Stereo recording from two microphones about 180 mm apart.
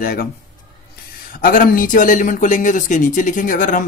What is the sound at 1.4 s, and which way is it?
Speech, 50° left (ahead or behind).